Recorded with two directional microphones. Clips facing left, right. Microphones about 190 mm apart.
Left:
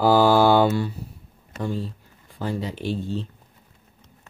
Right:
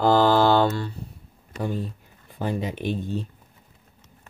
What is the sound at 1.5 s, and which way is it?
Speech, 15° right (ahead or behind).